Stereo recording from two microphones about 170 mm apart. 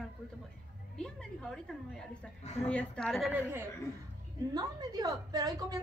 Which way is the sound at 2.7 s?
5° left (ahead or behind).